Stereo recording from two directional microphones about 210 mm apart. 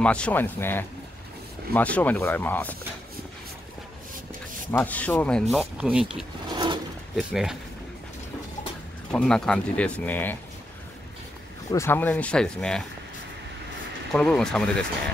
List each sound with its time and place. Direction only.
0.0 s speech: 5° left (ahead or behind)
4.6 s speech: 10° left (ahead or behind)
6.5 s a sound: 20° right (ahead or behind)
7.2 s speech: centre (ahead or behind)
9.1 s speech: 5° left (ahead or behind)
11.7 s speech: 10° left (ahead or behind)
14.1 s speech: 5° left (ahead or behind)